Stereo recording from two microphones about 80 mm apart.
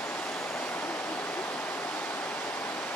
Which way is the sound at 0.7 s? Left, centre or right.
Left.